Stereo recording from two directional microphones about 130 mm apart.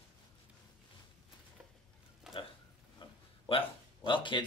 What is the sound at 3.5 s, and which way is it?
A man's voice, 45° left (ahead or behind).